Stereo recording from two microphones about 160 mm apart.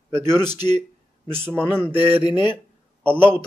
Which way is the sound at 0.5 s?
25° left (ahead or behind).